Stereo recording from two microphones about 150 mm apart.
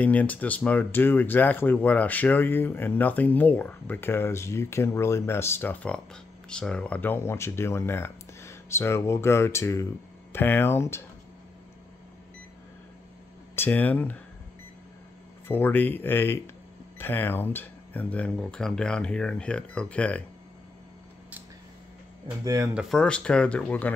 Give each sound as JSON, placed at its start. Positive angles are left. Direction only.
{"t": 0.0, "sound": "speech", "side_deg": 10}
{"t": 13.6, "sound": "speech", "side_deg": 10}
{"t": 15.4, "sound": "speech", "side_deg": 15}
{"t": 22.4, "sound": "speech", "side_deg": -25}
{"t": 22.8, "sound": "speech", "side_deg": 5}